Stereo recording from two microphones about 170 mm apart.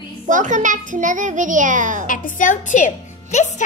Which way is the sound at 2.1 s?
50° left (ahead or behind).